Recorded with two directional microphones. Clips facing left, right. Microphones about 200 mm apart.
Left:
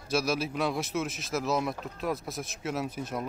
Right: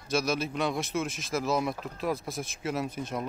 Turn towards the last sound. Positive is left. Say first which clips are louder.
# right 1 dB
turn(degrees=0)  # may be behind; listen again after turning